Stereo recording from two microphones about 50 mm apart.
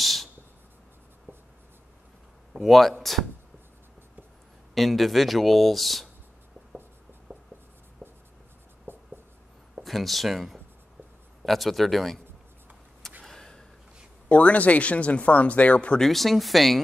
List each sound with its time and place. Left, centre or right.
0.0 s a sound: centre
1.3 s writing: right
2.6 s speech: centre
4.7 s speech: centre
7.3 s writing: right
8.9 s writing: right
9.8 s speech: centre
13.3 s a sound: centre
14.3 s speech: left
16.0 s speech: centre